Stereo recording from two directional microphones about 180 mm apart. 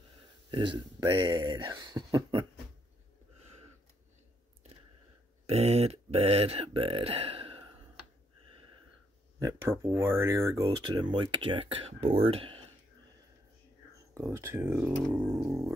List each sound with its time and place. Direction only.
0.5 s speech: 25° right (ahead or behind)
5.5 s speech: 35° right (ahead or behind)
9.4 s speech: 15° right (ahead or behind); by 12.6 s 30° right (ahead or behind)
14.1 s speech: 15° right (ahead or behind)